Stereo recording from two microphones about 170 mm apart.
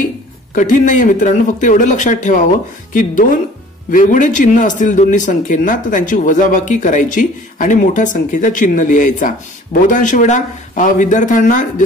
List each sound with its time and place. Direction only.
0.6 s a man's voice: 50° left (ahead or behind)